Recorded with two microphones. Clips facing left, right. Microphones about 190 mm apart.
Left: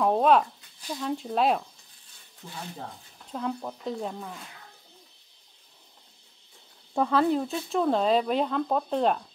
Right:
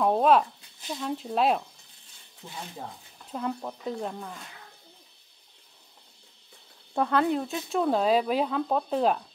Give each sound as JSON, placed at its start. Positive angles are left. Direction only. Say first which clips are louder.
{"t": 0.0, "sound": "a sound", "louder": "even", "side_deg": 0}
{"t": 0.8, "sound": "speech", "louder": "left 1 dB", "side_deg": 0}
{"t": 3.3, "sound": "speech", "louder": "even", "side_deg": 0}
{"t": 7.0, "sound": "speech", "louder": "left 1 dB", "side_deg": 0}